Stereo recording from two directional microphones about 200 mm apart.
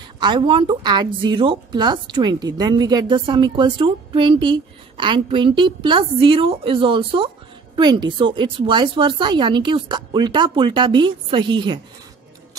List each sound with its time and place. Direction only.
0.2 s a woman's voice: 25° right (ahead or behind)